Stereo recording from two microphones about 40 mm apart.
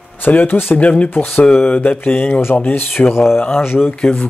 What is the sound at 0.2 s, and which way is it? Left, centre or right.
Speech, left.